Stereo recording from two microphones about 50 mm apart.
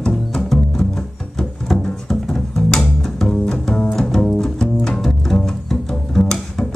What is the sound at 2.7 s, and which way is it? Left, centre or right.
Double bass, centre.